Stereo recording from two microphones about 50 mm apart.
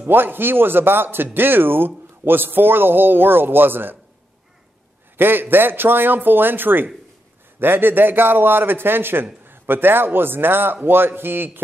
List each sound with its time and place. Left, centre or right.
0.0 s a man's voice: right
5.1 s a man's voice: right